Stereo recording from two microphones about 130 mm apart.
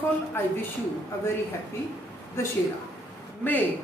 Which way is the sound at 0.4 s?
20° left (ahead or behind).